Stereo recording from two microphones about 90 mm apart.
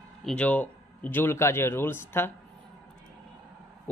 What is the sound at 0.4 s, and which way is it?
A man's voice, 15° left (ahead or behind).